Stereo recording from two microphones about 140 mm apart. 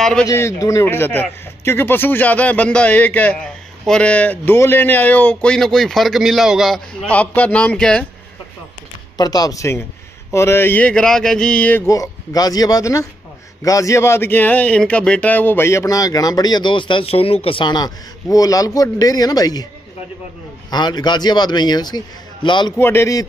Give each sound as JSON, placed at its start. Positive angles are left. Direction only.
{"t": 0.0, "sound": "a man's voice", "side_deg": 5}
{"t": 0.3, "sound": "speech", "side_deg": 20}
{"t": 9.1, "sound": "a man's voice", "side_deg": 30}
{"t": 20.7, "sound": "a man's voice", "side_deg": 30}
{"t": 22.8, "sound": "a man's voice", "side_deg": 20}